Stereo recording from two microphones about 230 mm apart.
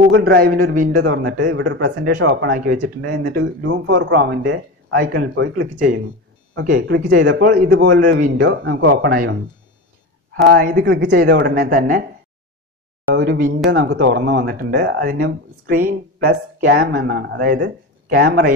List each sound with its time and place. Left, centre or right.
0.2 s speech: right
0.5 s a man's voice: right
1.1 s speech: right
5.5 s speech: right
13.1 s speech: right